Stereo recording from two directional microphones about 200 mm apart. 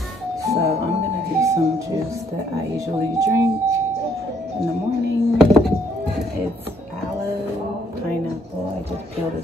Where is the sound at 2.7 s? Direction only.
15° right (ahead or behind).